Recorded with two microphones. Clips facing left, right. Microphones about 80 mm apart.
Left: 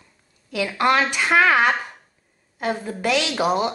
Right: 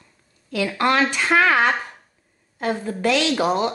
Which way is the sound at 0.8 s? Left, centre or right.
Centre.